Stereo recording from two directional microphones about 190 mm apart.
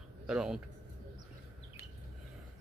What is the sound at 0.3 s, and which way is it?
Speech, 5° right (ahead or behind).